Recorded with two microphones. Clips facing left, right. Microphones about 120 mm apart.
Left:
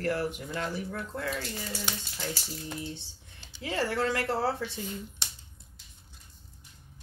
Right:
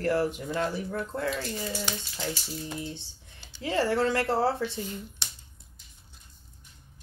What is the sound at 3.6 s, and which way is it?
Speech, 35° right (ahead or behind).